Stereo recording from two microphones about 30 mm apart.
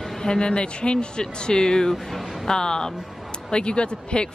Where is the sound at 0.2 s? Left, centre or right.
Left.